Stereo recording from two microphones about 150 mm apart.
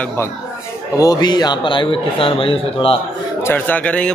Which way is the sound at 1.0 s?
25° left (ahead or behind).